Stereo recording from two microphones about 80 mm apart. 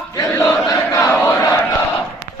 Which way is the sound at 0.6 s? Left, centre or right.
Left.